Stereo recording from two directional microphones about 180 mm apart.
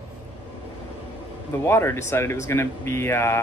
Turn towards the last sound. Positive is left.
turn(degrees=15)  # may be behind; listen again after turning